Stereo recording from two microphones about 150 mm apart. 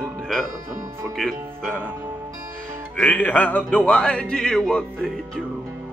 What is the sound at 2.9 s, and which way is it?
Speech, 10° left (ahead or behind).